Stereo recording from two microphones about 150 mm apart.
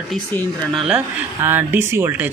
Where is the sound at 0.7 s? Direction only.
Centre (ahead or behind).